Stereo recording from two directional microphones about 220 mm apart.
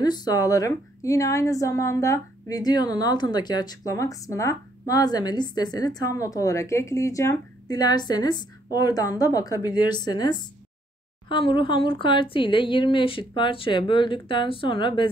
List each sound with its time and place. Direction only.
0.0 s a woman's voice: 20° left (ahead or behind)